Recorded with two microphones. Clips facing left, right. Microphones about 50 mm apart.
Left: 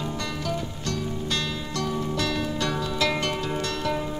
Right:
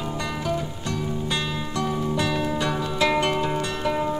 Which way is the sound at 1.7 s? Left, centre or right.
Centre.